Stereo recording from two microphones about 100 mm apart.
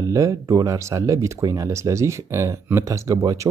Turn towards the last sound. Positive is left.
turn(degrees=-35)  # may be behind; listen again after turning